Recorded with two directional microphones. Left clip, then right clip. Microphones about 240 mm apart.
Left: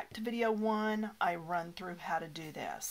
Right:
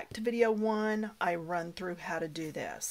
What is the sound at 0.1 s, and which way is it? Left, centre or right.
Speech, right.